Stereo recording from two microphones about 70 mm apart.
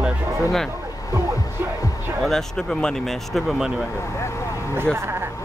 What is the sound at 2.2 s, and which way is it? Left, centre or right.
Speech, centre.